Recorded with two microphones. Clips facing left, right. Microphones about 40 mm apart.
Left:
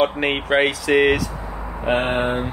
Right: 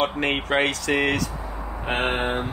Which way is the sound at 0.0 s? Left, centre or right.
Centre.